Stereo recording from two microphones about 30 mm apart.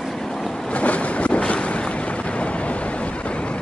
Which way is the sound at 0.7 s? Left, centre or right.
Left.